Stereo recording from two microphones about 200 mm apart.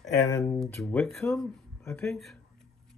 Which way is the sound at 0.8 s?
5° left (ahead or behind).